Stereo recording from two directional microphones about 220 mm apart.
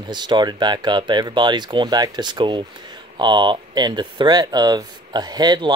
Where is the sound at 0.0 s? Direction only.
20° right (ahead or behind).